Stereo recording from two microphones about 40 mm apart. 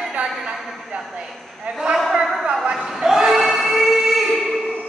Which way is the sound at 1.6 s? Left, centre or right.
Centre.